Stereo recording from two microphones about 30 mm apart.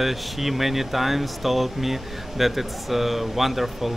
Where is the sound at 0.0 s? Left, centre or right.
Centre.